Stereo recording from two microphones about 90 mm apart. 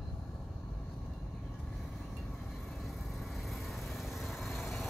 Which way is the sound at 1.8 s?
Centre (ahead or behind).